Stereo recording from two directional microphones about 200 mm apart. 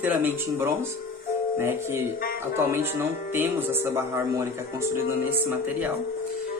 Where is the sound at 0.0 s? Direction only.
10° right (ahead or behind).